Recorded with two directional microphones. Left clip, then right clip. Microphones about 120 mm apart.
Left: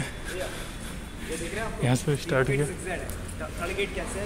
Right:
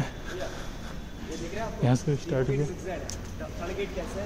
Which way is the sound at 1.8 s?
45° right (ahead or behind).